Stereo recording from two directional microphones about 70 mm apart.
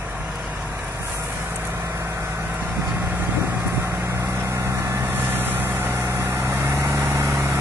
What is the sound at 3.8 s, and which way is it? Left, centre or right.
Vehicle, right.